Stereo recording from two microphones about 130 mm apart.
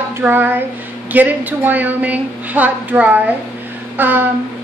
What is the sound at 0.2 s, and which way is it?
A woman's voice, 15° right (ahead or behind).